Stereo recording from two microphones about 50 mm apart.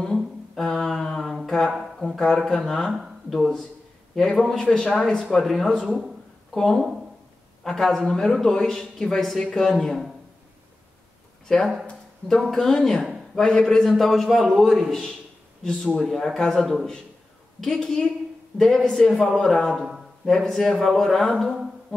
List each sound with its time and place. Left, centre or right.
0.0 s a sound: centre
2.0 s speech: centre
4.1 s a man's voice: centre
5.2 s a man's voice: centre
5.9 s speech: centre
6.5 s a man's voice: centre
11.6 s speech: centre
12.5 s a man's voice: centre
13.9 s a man's voice: centre
15.6 s a man's voice: centre
19.7 s a sound: centre
20.3 s a man's voice: centre